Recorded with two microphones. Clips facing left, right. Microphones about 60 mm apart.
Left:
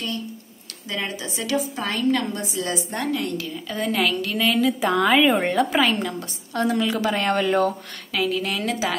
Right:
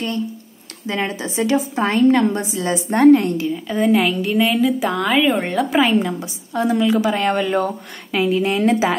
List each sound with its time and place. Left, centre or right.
0.8 s a woman's voice: right
3.4 s a woman's voice: centre
5.9 s a woman's voice: centre
8.1 s a woman's voice: right